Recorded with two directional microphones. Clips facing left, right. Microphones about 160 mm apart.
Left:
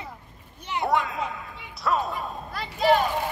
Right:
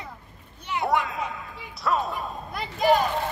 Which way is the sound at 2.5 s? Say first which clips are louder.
Right 2 dB; 15° right (ahead or behind).